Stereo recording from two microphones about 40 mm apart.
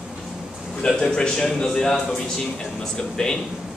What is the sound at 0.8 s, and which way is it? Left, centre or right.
A man's voice, centre.